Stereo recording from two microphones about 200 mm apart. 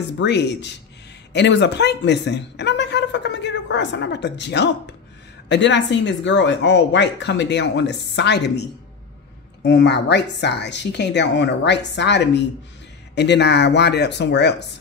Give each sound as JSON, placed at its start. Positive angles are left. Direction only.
{"t": 0.2, "sound": "speech", "side_deg": 60}